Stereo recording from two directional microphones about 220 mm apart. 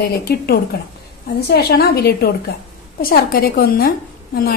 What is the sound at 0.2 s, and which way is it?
A woman's voice, 45° left (ahead or behind).